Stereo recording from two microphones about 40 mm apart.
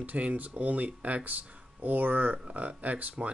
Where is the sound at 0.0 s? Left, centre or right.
Right.